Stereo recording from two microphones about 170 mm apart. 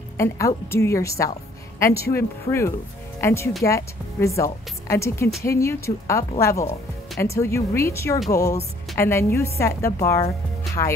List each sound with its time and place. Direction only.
0.2 s speech: 15° left (ahead or behind)
1.9 s speech: 65° left (ahead or behind)
2.1 s speech: 15° left (ahead or behind)
10.8 s speech: 30° left (ahead or behind)